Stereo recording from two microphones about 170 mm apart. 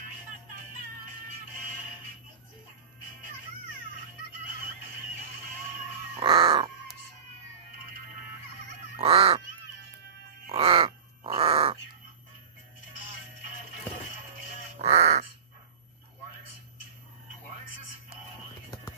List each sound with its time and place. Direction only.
6.1 s music: 30° right (ahead or behind)
9.0 s goose: 35° right (ahead or behind)
10.5 s crow: 30° right (ahead or behind)
14.9 s crow: 65° right (ahead or behind)